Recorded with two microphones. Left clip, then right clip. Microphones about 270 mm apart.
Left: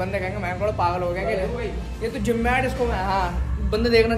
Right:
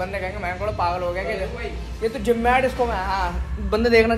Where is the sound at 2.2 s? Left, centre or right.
Centre.